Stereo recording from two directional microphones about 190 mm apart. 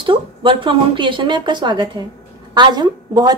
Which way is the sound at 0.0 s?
25° right (ahead or behind).